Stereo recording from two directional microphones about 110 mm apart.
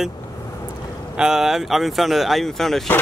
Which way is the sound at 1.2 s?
5° right (ahead or behind).